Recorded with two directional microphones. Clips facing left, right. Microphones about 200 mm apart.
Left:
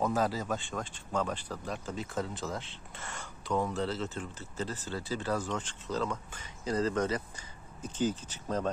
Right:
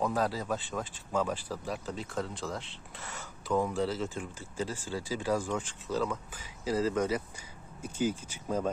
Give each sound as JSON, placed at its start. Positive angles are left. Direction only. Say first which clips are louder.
{"t": 0.0, "sound": "speech", "louder": "even", "side_deg": 0}